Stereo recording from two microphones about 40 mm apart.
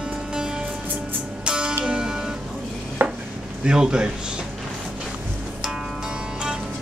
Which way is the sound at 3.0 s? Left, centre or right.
Right.